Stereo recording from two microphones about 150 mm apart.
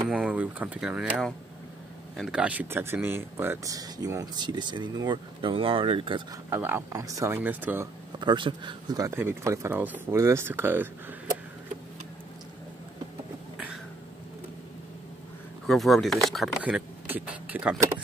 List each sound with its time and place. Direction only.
0.1 s speech: 5° right (ahead or behind); by 6.2 s 35° right (ahead or behind)
6.5 s speech: 15° right (ahead or behind)
8.2 s speech: 30° right (ahead or behind); by 10.9 s 15° right (ahead or behind)
15.6 s speech: centre (ahead or behind)